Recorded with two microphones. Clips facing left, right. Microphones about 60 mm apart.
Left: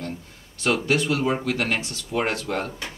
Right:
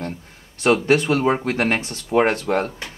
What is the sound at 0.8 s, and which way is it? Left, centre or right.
Speech, right.